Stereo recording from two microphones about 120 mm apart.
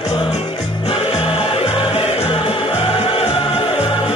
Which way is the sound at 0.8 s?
55° left (ahead or behind).